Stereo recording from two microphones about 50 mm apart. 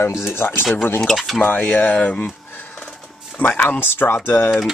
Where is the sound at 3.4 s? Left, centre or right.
Left.